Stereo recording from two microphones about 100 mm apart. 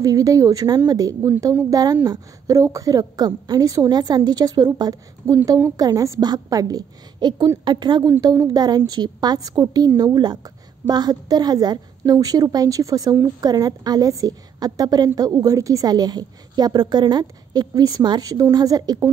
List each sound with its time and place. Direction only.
0.0 s a woman's voice: 35° right (ahead or behind)
5.2 s a woman's voice: 35° right (ahead or behind)